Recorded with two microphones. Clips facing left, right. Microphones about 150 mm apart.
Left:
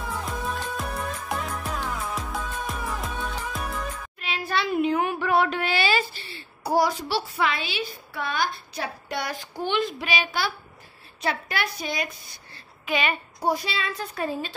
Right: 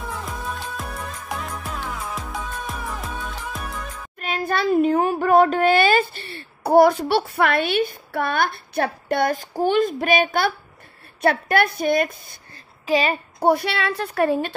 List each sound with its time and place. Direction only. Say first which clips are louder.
0.0 s music: even; centre (ahead or behind)
4.2 s a sound: right 5 dB; 45° right (ahead or behind)
11.1 s a woman's voice: right 9 dB; 55° right (ahead or behind)
12.8 s speech: right 6 dB; 35° right (ahead or behind)
13.4 s a woman's voice: right 8 dB; 60° right (ahead or behind)